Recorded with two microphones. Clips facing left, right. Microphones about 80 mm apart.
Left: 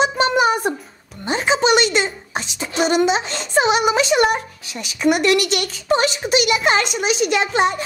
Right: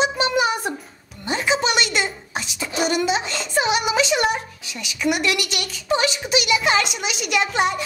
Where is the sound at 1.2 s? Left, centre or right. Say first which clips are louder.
Left 4 dB; left.